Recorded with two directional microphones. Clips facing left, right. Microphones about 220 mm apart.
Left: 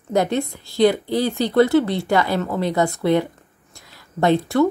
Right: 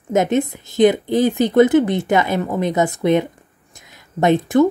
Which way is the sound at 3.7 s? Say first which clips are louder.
Right 3 dB; 20° right (ahead or behind).